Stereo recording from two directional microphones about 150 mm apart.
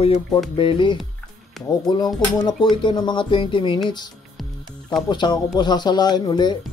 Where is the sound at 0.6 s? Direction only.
35° left (ahead or behind).